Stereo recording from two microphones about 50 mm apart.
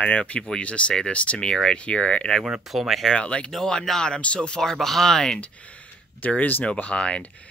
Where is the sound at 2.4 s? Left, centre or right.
Centre.